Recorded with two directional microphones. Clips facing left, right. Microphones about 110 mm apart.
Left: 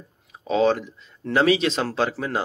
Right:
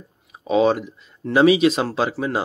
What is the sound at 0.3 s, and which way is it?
Speech, 15° right (ahead or behind).